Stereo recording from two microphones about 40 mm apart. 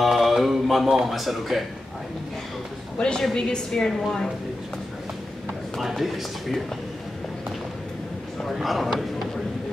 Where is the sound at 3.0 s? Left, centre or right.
Left.